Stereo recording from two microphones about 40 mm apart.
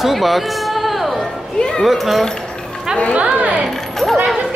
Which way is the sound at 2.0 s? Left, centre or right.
Centre.